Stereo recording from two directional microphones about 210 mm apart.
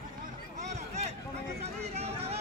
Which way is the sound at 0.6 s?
30° right (ahead or behind).